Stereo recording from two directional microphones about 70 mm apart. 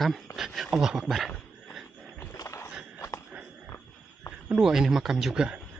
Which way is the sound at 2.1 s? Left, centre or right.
Left.